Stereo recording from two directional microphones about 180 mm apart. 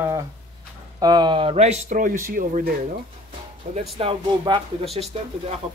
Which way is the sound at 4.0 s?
30° right (ahead or behind).